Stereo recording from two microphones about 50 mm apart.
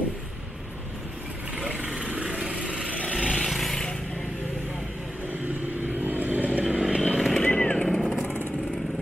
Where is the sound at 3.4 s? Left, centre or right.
Centre.